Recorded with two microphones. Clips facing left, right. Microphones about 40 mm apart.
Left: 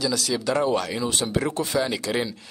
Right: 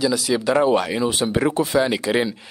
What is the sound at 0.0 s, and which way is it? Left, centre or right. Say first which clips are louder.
Speech: right 5 dB; centre.